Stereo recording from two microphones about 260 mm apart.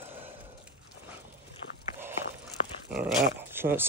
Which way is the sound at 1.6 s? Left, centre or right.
Left.